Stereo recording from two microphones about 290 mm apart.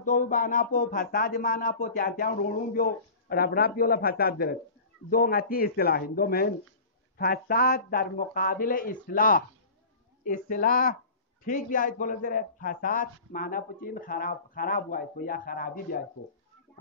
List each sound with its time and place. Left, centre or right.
0.0 s a man's voice: left